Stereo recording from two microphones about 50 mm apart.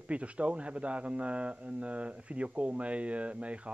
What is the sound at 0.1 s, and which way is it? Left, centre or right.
A man's voice, right.